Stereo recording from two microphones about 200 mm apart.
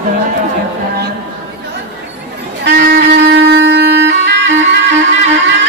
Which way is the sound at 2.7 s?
55° right (ahead or behind).